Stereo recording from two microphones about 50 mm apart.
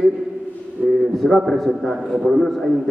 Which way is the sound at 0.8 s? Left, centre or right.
Right.